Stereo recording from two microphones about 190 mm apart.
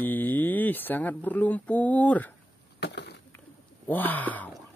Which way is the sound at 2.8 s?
60° left (ahead or behind).